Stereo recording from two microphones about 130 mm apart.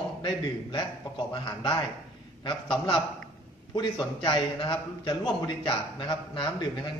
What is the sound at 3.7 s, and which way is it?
A man's voice, 35° left (ahead or behind).